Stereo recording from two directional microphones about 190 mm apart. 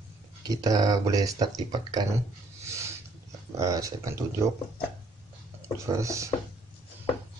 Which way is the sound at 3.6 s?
15° right (ahead or behind).